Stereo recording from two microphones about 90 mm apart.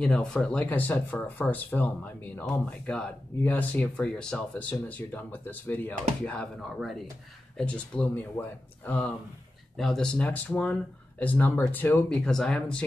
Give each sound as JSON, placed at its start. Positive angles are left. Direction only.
{"t": 0.0, "sound": "speech", "side_deg": 10}
{"t": 0.7, "sound": "speech", "side_deg": 20}
{"t": 7.5, "sound": "speech", "side_deg": 15}
{"t": 9.8, "sound": "speech", "side_deg": 0}
{"t": 10.1, "sound": "speech", "side_deg": 15}
{"t": 12.3, "sound": "speech", "side_deg": 5}